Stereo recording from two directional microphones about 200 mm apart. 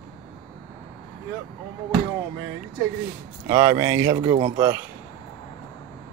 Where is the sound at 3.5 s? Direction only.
15° right (ahead or behind).